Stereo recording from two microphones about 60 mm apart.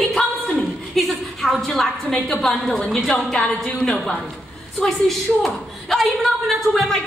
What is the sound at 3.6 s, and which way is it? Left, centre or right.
Speech, centre.